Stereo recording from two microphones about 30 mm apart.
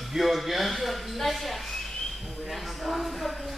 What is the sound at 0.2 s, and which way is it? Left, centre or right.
Speech, centre.